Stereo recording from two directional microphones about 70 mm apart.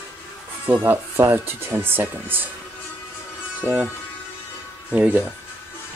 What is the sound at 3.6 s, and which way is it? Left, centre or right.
Speech, centre.